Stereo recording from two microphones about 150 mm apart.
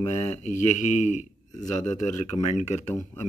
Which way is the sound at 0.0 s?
45° left (ahead or behind).